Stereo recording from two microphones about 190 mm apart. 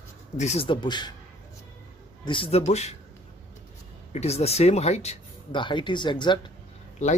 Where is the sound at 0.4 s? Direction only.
35° left (ahead or behind).